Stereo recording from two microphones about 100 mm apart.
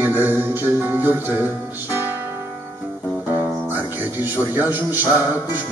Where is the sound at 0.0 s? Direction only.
20° right (ahead or behind).